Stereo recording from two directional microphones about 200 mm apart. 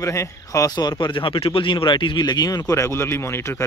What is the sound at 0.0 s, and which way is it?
A man's voice, 15° left (ahead or behind).